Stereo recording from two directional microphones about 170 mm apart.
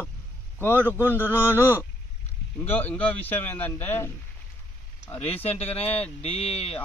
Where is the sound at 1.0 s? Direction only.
10° left (ahead or behind).